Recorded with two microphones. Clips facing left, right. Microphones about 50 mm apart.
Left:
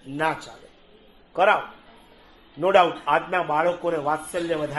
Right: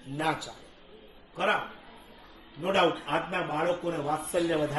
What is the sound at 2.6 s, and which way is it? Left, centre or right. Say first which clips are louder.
Speech: left 8 dB; left.